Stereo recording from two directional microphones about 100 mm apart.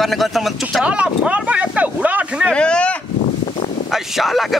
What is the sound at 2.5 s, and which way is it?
Speech, 10° left (ahead or behind).